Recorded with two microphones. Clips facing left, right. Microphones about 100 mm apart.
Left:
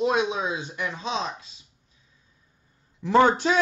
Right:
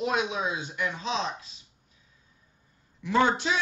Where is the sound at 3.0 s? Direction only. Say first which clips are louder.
Left 5 dB; 45° left (ahead or behind).